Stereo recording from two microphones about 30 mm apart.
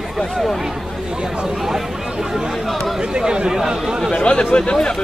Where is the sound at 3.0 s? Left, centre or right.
Right.